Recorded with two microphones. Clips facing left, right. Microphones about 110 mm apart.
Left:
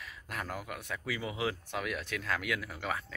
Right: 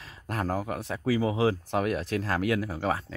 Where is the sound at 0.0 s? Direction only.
40° right (ahead or behind).